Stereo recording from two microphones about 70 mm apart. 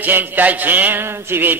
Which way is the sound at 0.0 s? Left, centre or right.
Right.